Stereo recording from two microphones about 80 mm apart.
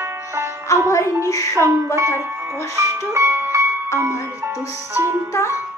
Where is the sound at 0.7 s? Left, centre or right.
Left.